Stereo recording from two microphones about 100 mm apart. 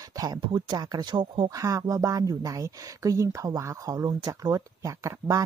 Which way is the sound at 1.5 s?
35° right (ahead or behind).